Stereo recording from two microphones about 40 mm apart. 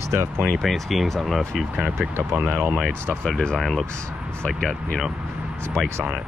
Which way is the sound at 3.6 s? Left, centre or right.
Centre.